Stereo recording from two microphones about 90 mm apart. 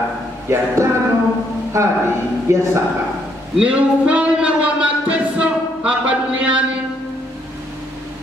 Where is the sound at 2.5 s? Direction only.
30° right (ahead or behind).